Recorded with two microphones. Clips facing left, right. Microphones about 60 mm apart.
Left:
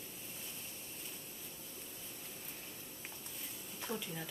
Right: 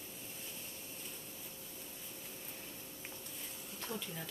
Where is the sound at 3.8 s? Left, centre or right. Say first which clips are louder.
Left 1 dB; centre.